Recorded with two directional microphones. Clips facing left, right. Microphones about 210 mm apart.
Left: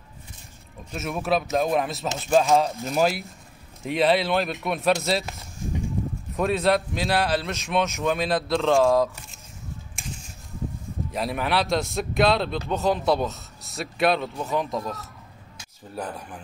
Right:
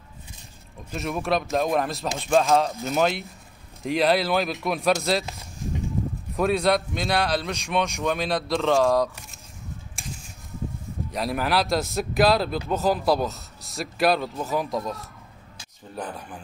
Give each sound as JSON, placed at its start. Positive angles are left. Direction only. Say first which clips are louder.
{"t": 0.9, "sound": "speech", "louder": "even", "side_deg": 0}
{"t": 6.3, "sound": "speech", "louder": "even", "side_deg": 0}
{"t": 11.1, "sound": "speech", "louder": "right 1 dB", "side_deg": 0}